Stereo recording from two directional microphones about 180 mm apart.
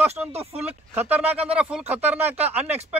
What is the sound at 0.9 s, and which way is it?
Speech, 10° right (ahead or behind).